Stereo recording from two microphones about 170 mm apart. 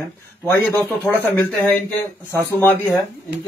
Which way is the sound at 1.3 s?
10° left (ahead or behind).